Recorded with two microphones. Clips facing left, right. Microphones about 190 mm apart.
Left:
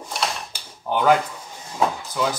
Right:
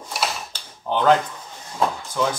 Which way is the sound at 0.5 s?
10° left (ahead or behind).